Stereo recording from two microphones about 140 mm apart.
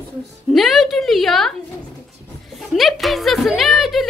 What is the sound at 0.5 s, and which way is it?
A woman's voice, centre (ahead or behind).